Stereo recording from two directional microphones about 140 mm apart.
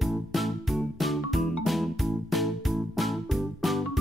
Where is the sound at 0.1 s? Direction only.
Centre (ahead or behind).